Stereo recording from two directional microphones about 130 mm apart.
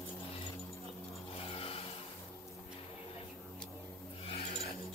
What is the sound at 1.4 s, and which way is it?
Music, 45° left (ahead or behind).